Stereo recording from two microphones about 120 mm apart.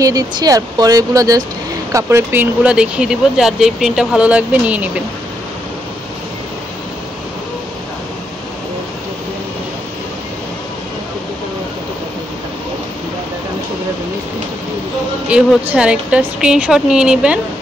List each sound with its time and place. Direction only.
0.0 s speech: 30° right (ahead or behind)
2.6 s speech: 10° right (ahead or behind)
15.2 s speech: 10° right (ahead or behind)